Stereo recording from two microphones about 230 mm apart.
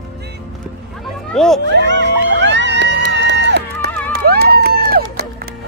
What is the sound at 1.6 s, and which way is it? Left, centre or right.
Music, right.